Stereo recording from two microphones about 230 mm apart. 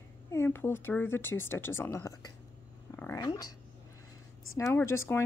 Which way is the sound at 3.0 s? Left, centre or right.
Centre.